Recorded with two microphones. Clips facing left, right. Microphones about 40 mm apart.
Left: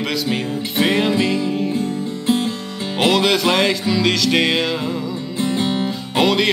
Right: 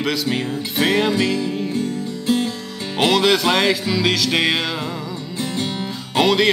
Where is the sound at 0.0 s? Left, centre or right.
Centre.